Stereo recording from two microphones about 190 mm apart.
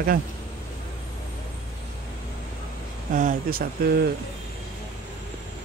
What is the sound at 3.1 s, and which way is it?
Speech, 45° right (ahead or behind).